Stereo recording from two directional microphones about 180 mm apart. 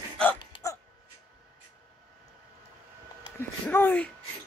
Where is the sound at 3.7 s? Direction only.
10° left (ahead or behind).